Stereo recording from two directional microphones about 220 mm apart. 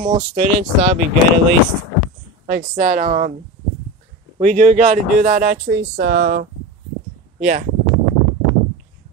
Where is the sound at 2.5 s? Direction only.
40° right (ahead or behind).